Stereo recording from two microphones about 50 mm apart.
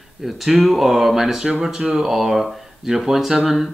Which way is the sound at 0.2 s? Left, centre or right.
Centre.